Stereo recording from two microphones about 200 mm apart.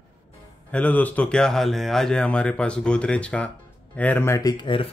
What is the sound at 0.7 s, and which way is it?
Speech, 5° left (ahead or behind).